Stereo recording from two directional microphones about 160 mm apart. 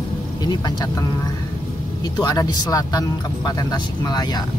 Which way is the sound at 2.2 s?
20° left (ahead or behind).